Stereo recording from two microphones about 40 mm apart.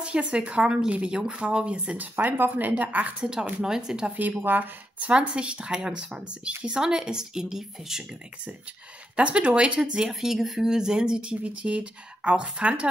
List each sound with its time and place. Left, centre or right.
0.0 s a woman's voice: right
2.2 s speech: right
3.2 s a woman's voice: centre
4.5 s speech: right
5.1 s a woman's voice: right
9.1 s speech: right
10.2 s a woman's voice: centre
10.7 s speech: centre